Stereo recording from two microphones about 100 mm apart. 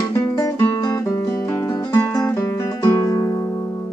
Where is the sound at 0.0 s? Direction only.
30° left (ahead or behind).